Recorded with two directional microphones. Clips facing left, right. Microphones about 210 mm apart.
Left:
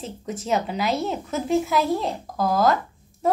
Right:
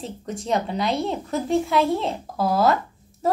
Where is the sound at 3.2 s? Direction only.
Centre (ahead or behind).